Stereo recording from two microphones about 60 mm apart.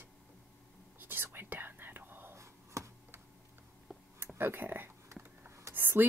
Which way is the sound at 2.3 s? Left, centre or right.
Right.